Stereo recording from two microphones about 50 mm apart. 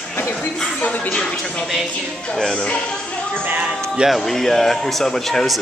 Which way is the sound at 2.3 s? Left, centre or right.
Centre.